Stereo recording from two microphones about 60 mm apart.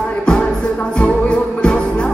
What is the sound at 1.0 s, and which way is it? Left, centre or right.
Music, centre.